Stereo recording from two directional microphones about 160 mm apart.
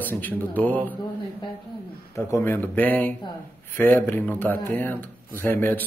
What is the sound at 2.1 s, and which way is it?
Speech, 15° left (ahead or behind).